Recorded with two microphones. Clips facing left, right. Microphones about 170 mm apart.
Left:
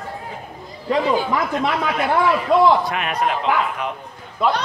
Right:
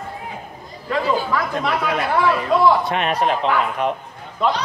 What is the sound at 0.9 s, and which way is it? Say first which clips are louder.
Speech: left 2 dB; 20° left (ahead or behind).